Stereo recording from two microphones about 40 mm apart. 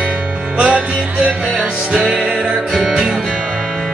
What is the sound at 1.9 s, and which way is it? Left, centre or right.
Music, centre.